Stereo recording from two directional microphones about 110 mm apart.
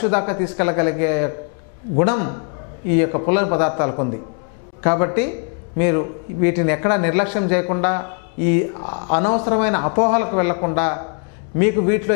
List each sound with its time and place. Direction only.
0.0 s a man's voice: 15° left (ahead or behind)